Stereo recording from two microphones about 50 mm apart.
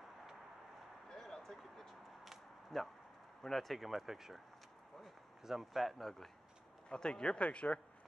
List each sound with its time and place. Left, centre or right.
1.0 s a sound: centre
3.4 s a man's voice: centre
6.9 s speech: centre